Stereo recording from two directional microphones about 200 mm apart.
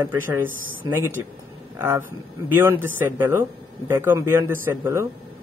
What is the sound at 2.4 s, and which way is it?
A man's voice, 10° right (ahead or behind).